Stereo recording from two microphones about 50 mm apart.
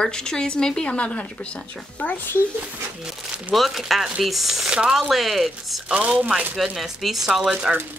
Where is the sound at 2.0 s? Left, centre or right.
Left.